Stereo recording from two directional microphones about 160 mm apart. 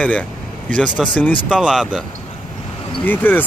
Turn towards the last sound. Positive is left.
turn(degrees=10)  # may be behind; listen again after turning